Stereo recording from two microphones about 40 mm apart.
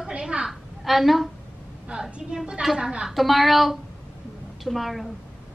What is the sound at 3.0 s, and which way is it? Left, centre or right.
A woman's voice, centre.